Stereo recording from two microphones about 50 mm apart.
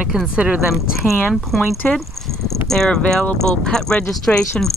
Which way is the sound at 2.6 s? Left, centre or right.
Centre.